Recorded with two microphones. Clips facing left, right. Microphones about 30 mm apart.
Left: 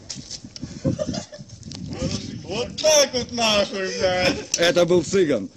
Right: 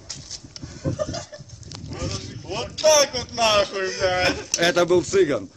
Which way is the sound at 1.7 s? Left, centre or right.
Centre.